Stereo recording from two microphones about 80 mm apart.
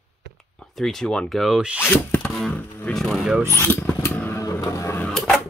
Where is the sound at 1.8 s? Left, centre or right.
Left.